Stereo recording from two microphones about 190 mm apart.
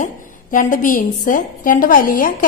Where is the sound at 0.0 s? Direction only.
45° left (ahead or behind).